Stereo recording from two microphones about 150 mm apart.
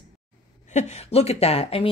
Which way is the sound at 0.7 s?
45° left (ahead or behind).